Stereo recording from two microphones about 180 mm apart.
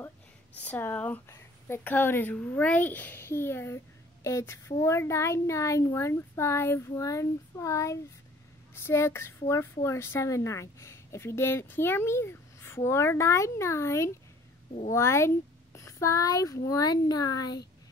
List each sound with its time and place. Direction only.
0.6 s a child's voice: 10° left (ahead or behind)